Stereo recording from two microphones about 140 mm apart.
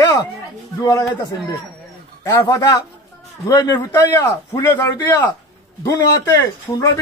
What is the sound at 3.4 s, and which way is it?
A man's voice, 30° left (ahead or behind).